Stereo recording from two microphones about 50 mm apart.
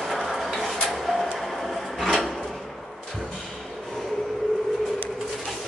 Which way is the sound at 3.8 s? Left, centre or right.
Centre.